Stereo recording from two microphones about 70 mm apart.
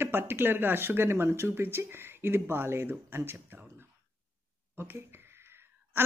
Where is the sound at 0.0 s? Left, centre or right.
Right.